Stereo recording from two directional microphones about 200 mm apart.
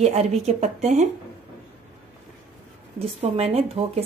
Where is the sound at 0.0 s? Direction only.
35° right (ahead or behind).